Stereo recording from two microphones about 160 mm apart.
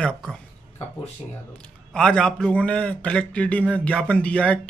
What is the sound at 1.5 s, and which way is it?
A man's voice, 5° left (ahead or behind).